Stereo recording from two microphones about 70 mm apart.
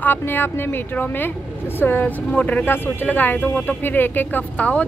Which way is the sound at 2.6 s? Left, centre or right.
Left.